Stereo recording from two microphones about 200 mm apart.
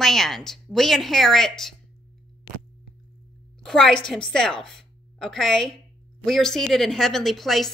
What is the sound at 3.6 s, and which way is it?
A woman's voice, 5° left (ahead or behind).